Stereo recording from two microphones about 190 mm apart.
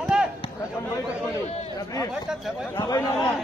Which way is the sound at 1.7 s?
15° left (ahead or behind).